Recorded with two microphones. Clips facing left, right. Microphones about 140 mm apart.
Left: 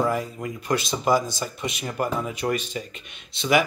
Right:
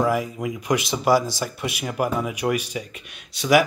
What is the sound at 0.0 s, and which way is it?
Speech, 10° right (ahead or behind).